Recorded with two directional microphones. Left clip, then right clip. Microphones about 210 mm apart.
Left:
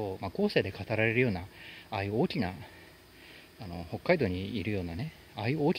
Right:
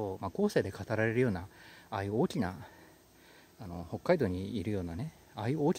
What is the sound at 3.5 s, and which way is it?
Speech, 20° right (ahead or behind).